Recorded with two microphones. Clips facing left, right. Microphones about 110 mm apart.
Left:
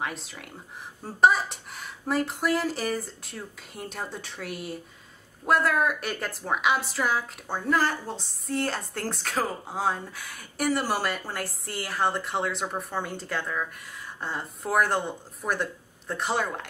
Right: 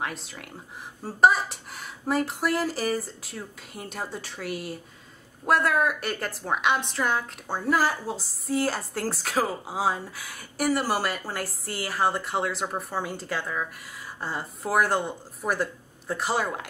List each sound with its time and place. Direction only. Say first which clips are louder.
0.0 s a woman's voice: even; centre (ahead or behind)